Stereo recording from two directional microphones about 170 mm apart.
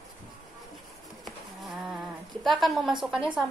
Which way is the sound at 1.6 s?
5° right (ahead or behind).